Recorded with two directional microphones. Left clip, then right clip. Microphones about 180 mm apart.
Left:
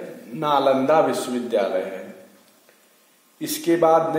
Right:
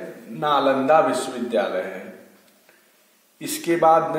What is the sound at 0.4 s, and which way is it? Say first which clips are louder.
A man's voice: left 1 dB; 35° left (ahead or behind).